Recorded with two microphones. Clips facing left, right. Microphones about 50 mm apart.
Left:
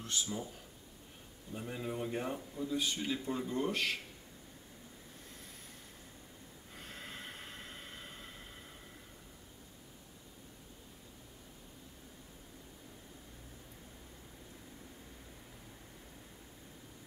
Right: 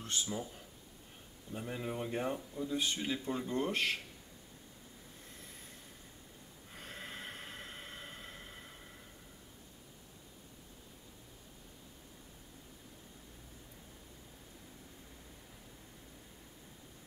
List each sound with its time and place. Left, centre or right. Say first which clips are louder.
0.0 s speech: even; centre
1.5 s speech: even; centre
3.7 s speech: right 1 dB; right
6.7 s snort: right 1 dB; centre
7.3 s vehicle: right 1 dB; centre